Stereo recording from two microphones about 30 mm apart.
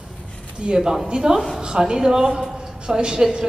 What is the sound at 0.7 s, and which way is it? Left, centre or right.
A woman's voice, centre.